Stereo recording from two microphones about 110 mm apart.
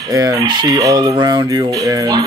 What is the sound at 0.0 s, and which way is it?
Speech, 35° right (ahead or behind).